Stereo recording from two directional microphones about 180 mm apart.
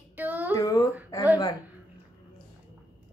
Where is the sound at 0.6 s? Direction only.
20° left (ahead or behind).